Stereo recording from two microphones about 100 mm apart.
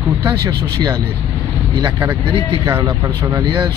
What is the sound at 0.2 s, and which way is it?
Speech, 45° right (ahead or behind).